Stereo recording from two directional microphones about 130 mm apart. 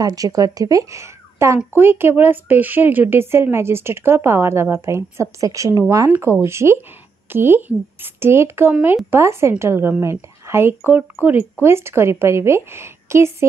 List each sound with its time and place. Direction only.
0.0 s speech: 30° right (ahead or behind)